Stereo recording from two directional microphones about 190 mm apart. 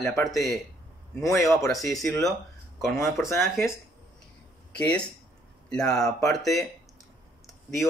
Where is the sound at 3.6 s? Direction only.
Centre (ahead or behind).